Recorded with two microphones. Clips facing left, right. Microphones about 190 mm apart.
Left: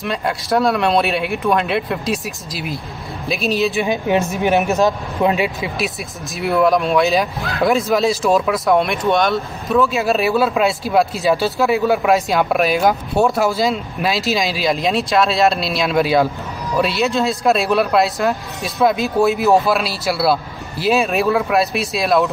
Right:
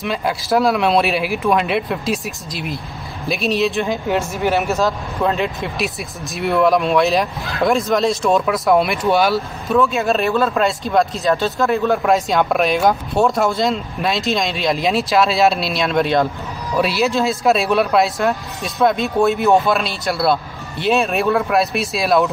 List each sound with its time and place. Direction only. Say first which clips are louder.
0.0 s speech: even; centre (ahead or behind)
3.8 s speech: left 2 dB; 20° left (ahead or behind); by 22.3 s centre (ahead or behind)